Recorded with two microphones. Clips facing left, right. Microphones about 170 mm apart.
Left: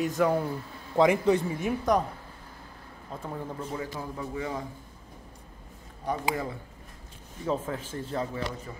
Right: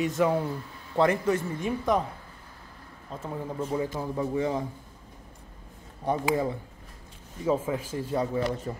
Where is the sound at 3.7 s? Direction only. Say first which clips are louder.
Right 5 dB; 25° right (ahead or behind).